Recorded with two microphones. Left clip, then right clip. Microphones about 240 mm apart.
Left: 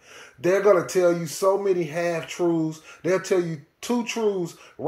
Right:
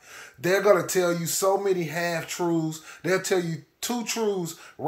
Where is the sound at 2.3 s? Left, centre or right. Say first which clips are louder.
Left 3 dB; right.